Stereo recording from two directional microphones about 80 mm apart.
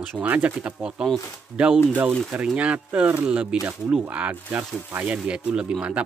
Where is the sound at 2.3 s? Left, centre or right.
Centre.